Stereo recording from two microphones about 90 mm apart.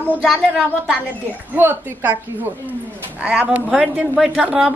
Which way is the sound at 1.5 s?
20° right (ahead or behind).